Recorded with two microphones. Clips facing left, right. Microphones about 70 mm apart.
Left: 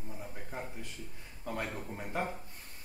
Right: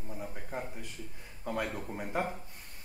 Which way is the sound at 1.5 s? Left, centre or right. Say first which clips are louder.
Right 3 dB; centre.